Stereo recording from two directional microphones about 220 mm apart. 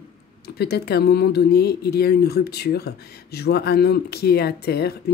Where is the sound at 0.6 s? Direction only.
45° left (ahead or behind).